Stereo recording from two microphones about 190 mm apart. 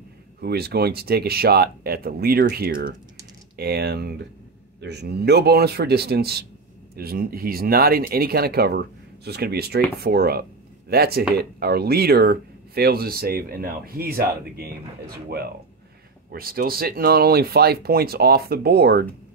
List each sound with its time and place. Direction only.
0.4 s speech: 55° right (ahead or behind)